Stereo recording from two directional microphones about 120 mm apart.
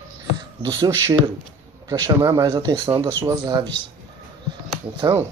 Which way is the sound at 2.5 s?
35° right (ahead or behind).